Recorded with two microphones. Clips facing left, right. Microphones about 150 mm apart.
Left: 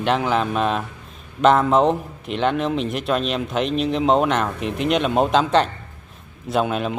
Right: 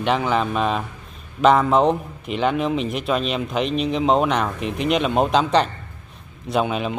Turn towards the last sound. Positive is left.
turn(degrees=0)  # may be behind; listen again after turning